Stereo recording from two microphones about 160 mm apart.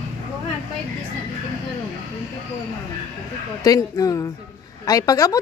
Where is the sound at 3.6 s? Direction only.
20° left (ahead or behind).